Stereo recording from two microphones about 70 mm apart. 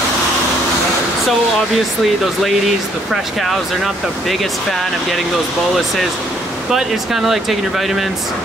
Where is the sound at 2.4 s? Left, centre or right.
Centre.